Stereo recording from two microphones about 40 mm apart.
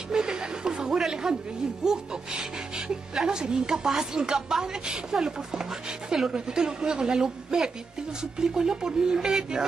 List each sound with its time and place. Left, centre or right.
0.1 s a sound: centre
1.8 s speech: centre
3.3 s speech: centre